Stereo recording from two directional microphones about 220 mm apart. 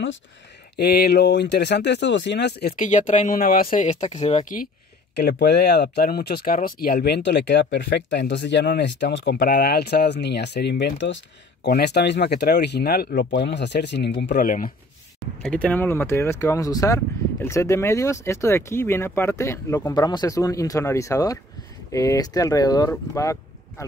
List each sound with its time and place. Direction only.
0.7 s speech: 45° left (ahead or behind)
2.8 s speech: 35° left (ahead or behind)
5.1 s speech: 50° left (ahead or behind)
15.4 s speech: 5° left (ahead or behind)